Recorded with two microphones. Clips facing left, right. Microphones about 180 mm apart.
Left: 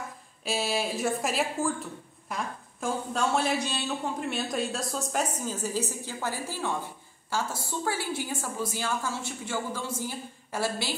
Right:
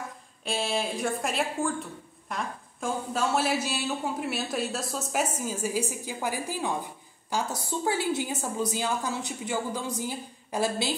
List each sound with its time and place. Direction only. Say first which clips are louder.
0.5 s a woman's voice: even; centre (ahead or behind); by 11.0 s 20° right (ahead or behind)